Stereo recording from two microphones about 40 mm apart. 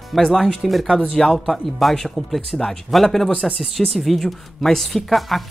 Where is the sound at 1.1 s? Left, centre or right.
Centre.